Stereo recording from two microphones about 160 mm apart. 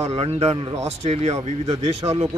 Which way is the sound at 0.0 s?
40° right (ahead or behind).